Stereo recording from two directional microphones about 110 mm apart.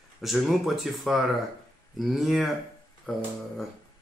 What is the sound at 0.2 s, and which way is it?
Speech, centre (ahead or behind).